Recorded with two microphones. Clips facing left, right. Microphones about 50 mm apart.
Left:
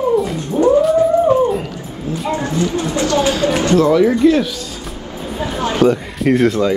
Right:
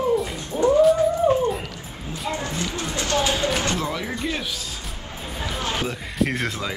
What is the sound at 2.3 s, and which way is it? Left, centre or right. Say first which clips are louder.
Speech: left 11 dB; left.